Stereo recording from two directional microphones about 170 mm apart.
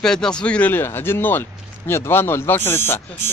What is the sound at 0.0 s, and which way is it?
Speech, 5° left (ahead or behind).